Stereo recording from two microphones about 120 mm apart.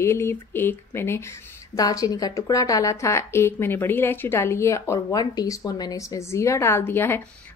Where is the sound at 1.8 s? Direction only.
30° left (ahead or behind).